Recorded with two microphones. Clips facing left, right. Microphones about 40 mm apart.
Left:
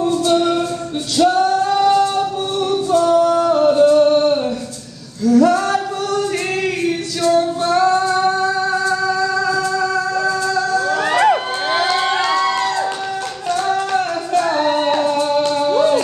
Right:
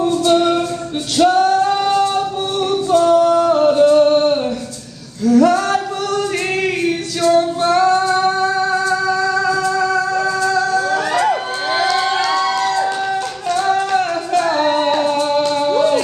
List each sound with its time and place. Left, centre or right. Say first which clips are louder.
0.3 s music: right 3 dB; right
3.0 s singing: right 2 dB; right
3.5 s singing: left 1 dB; right
5.3 s female singing: right 1 dB; right
7.2 s female singing: right 2 dB; right
8.1 s music: right 1 dB; right
11.0 s crowd: left 2 dB; left
11.7 s crowd: right 1 dB; centre
13.7 s music: right 2 dB; right